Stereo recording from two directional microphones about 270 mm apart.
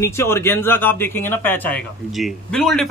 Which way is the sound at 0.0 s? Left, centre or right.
Centre.